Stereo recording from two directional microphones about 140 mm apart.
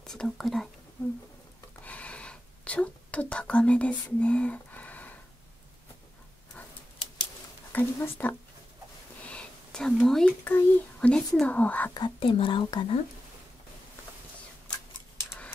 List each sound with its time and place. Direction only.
0.0 s speech: 5° left (ahead or behind)
1.9 s whispering: 10° left (ahead or behind)
7.7 s speech: 15° left (ahead or behind)
9.2 s a sound: 10° left (ahead or behind)
10.4 s speech: 15° left (ahead or behind)
11.9 s speech: 35° left (ahead or behind)
15.1 s a sound: 10° left (ahead or behind)